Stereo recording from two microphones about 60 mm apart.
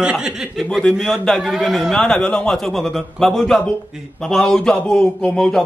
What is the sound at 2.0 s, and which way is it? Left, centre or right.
Speech, centre.